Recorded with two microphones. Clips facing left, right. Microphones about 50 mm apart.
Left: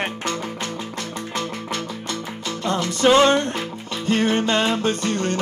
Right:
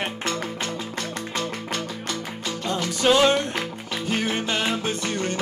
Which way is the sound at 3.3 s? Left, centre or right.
Left.